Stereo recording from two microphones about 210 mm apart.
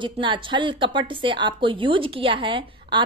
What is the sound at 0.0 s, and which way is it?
A woman's voice, 25° right (ahead or behind).